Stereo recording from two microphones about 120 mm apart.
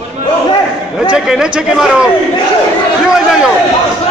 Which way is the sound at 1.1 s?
5° right (ahead or behind).